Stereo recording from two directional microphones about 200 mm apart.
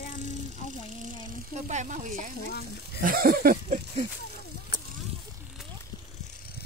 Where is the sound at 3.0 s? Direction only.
45° right (ahead or behind).